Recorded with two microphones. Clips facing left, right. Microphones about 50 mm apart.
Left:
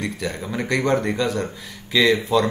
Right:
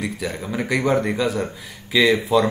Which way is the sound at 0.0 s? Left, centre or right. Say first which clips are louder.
Even; centre.